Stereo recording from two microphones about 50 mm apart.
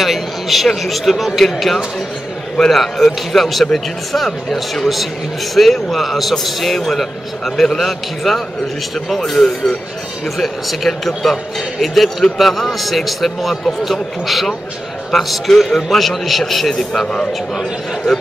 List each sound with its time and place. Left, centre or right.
0.0 s a man's voice: centre
17.0 s a man's voice: centre